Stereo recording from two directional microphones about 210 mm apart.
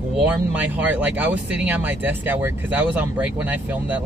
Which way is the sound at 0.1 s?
5° right (ahead or behind).